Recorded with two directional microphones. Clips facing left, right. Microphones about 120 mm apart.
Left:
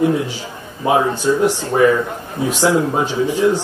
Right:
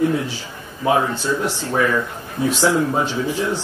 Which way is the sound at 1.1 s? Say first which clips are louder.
Left 6 dB; 15° left (ahead or behind).